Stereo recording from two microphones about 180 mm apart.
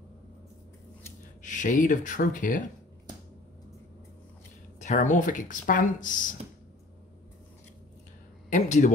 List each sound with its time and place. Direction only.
1.4 s speech: 45° left (ahead or behind)
4.7 s speech: 40° left (ahead or behind)
8.5 s speech: 40° left (ahead or behind)